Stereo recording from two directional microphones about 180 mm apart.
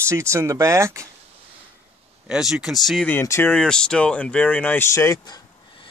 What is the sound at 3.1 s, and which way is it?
Speech, 15° left (ahead or behind).